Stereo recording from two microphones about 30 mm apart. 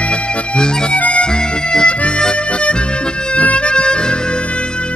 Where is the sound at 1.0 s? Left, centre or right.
Left.